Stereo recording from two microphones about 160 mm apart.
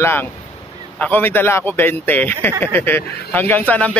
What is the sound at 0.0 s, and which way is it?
A man's voice, 15° left (ahead or behind).